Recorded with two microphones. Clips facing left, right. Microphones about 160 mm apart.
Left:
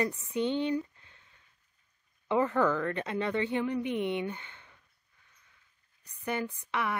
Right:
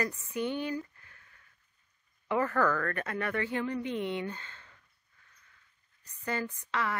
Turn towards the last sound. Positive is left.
turn(degrees=15)  # may be behind; listen again after turning